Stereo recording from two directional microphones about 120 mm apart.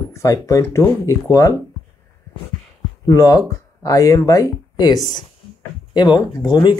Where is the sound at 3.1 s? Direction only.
30° left (ahead or behind).